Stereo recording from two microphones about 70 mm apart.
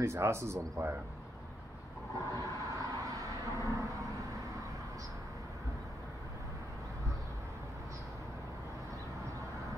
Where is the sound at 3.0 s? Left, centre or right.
Right.